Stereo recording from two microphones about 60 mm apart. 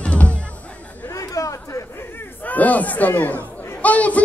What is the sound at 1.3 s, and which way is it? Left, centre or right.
Chatter, left.